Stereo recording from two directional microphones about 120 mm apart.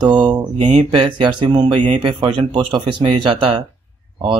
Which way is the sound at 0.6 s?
70° right (ahead or behind).